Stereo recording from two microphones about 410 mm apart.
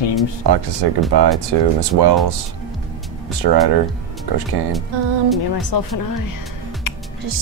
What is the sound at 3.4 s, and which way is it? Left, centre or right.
Speech, right.